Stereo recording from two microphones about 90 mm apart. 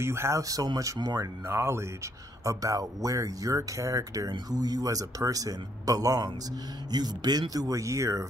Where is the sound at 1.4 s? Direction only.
30° right (ahead or behind).